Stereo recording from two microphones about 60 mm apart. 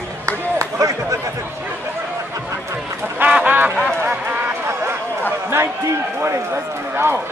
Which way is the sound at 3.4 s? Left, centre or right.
Right.